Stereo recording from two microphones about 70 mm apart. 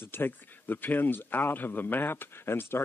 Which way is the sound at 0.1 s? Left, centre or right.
Left.